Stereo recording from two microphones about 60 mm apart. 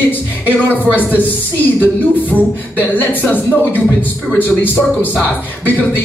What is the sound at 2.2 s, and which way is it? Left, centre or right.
Speech, right.